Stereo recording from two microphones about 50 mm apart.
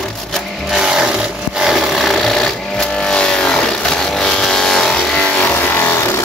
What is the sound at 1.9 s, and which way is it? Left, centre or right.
Sewing machine, centre.